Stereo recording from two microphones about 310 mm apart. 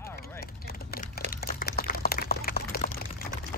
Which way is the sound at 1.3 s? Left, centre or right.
Left.